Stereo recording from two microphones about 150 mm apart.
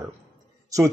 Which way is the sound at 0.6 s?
20° right (ahead or behind).